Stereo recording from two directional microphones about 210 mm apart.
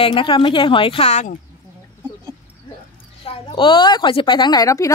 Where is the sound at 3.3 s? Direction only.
25° left (ahead or behind).